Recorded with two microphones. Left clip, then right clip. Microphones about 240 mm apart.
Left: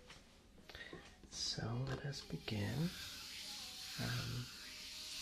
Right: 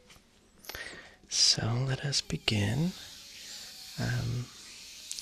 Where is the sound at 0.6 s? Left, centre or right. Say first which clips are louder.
Right 11 dB; right.